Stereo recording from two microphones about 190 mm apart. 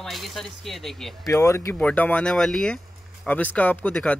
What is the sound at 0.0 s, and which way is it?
Speech, centre (ahead or behind).